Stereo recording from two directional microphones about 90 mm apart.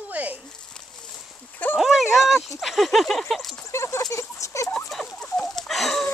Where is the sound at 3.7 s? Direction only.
30° left (ahead or behind).